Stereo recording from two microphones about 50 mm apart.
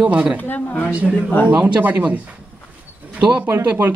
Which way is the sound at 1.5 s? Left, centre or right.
Right.